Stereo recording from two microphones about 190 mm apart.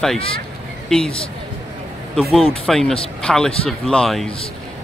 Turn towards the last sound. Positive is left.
turn(degrees=5)  # may be behind; listen again after turning